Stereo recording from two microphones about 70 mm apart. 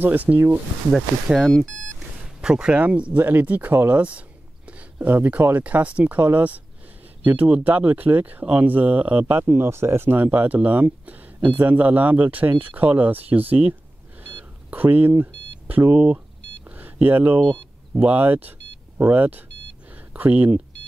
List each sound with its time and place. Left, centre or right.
0.0 s speech: right
0.9 s speech: centre
1.5 s speech: centre
2.4 s speech: centre; by 10.2 s right
10.2 s speech: right
14.2 s a sound: right
16.7 s beep: right
17.4 s speech: centre
17.9 s speech: right